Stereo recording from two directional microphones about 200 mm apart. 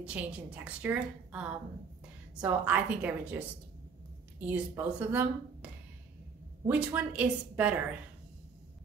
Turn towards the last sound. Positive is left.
turn(degrees=-5)  # may be behind; listen again after turning